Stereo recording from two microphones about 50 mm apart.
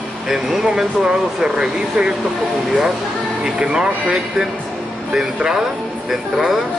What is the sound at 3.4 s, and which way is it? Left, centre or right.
Speech, centre.